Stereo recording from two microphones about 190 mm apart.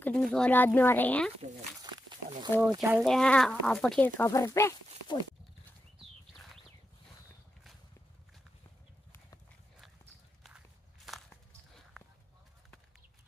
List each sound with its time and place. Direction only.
0.0 s speech: 5° left (ahead or behind)
1.8 s a sound: 20° right (ahead or behind)
2.7 s speech: 15° right (ahead or behind)
3.0 s speech: 5° left (ahead or behind); by 5.2 s 20° left (ahead or behind)
5.9 s a sound: centre (ahead or behind)
11.1 s walk: centre (ahead or behind)